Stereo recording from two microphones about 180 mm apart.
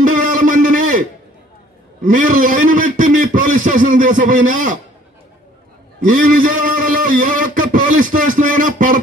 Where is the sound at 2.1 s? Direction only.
45° right (ahead or behind).